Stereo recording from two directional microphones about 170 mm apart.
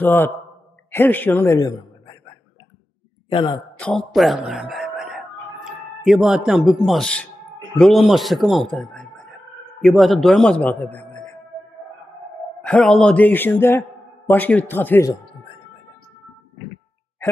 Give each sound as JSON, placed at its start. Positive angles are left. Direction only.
{"t": 0.0, "sound": "a man's voice", "side_deg": 10}
{"t": 3.3, "sound": "a man's voice", "side_deg": 30}
{"t": 3.8, "sound": "speech", "side_deg": 5}
{"t": 12.6, "sound": "a man's voice", "side_deg": 5}